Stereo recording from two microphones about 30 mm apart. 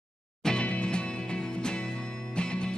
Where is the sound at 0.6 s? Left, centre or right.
Left.